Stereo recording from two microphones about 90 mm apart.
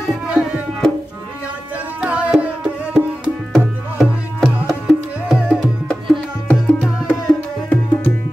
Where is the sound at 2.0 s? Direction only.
15° right (ahead or behind).